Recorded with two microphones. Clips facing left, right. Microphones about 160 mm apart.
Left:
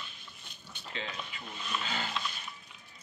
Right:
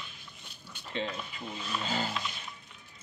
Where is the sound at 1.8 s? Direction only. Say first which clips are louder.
Right 4 dB; 35° right (ahead or behind).